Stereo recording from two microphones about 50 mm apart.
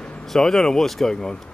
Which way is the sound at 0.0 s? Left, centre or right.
Centre.